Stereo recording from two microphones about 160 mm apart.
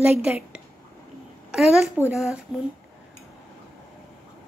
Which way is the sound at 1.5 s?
5° right (ahead or behind).